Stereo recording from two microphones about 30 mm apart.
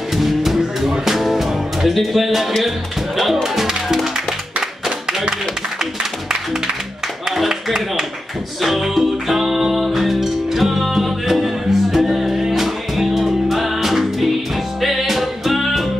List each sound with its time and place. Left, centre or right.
0.1 s music: centre
3.4 s speech: centre
7.4 s speech: centre
8.5 s music: centre